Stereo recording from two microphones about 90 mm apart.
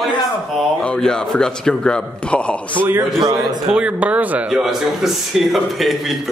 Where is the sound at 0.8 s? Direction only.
10° left (ahead or behind).